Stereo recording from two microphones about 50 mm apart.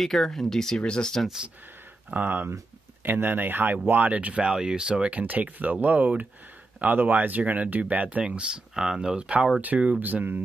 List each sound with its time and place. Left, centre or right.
0.0 s speech: centre
2.1 s speech: right
4.5 s speech: centre
5.1 s speech: right
8.7 s speech: centre
9.6 s speech: right